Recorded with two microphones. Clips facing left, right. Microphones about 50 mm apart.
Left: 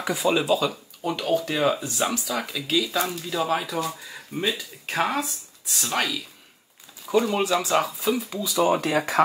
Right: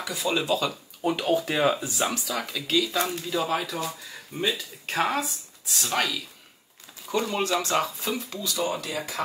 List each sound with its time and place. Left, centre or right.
0.1 s speech: centre
1.0 s speech: centre
8.7 s speech: left